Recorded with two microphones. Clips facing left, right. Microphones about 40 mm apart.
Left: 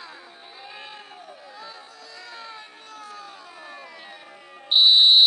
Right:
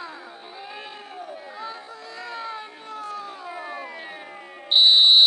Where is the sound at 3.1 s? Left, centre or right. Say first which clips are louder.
Right 7 dB; right.